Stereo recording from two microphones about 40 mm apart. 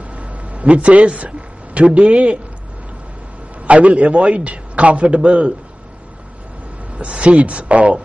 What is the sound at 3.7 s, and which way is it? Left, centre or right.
Speech, right.